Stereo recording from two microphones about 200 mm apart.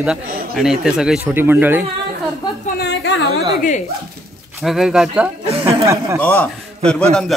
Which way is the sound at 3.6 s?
40° left (ahead or behind).